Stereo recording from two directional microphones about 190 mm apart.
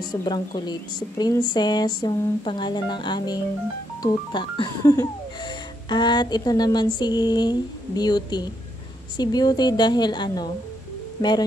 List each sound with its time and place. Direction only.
0.1 s speech: 20° left (ahead or behind)